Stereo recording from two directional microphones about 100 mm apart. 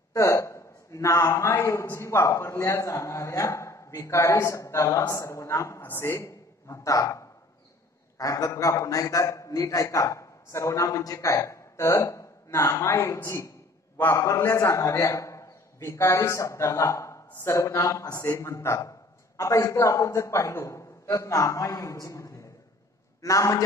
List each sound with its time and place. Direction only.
0.1 s a man's voice: 30° left (ahead or behind)